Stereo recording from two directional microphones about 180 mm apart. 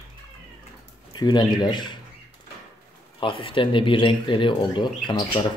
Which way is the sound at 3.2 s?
30° left (ahead or behind).